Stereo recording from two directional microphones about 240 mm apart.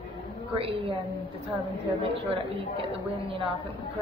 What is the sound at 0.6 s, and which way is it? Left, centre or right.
Speech, right.